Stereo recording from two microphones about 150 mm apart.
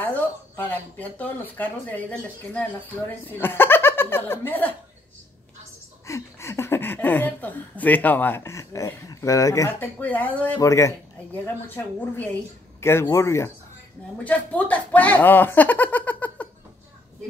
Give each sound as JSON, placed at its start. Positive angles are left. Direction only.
{"t": 0.0, "sound": "speech", "side_deg": 10}
{"t": 6.0, "sound": "speech", "side_deg": 20}